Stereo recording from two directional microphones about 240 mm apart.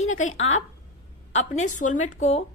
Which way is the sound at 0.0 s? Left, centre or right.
Left.